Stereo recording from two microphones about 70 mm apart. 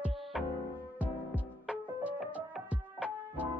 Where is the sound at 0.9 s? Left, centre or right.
Right.